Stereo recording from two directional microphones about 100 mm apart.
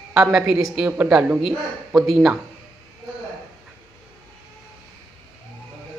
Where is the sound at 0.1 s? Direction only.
10° right (ahead or behind).